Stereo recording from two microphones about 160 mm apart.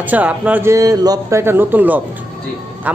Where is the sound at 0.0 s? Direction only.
10° right (ahead or behind).